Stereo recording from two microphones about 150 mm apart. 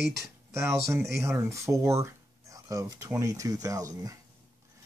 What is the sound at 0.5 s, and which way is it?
Speech, 20° right (ahead or behind).